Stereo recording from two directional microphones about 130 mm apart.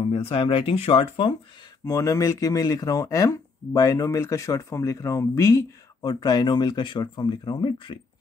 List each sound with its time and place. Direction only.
0.0 s speech: 45° left (ahead or behind)
1.9 s speech: 25° left (ahead or behind)